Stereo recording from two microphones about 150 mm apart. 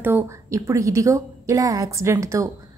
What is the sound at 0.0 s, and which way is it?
A woman's voice, 15° right (ahead or behind).